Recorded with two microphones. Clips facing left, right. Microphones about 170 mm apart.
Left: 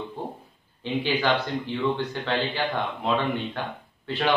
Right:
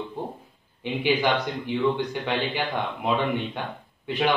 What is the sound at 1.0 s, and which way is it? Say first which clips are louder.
A man's voice: right 3 dB; 15° right (ahead or behind).